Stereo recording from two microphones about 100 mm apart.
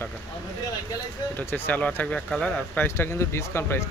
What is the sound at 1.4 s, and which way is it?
Speech, 15° left (ahead or behind).